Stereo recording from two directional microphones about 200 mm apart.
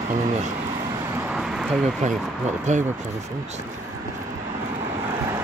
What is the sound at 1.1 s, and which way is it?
Vehicle, 5° right (ahead or behind).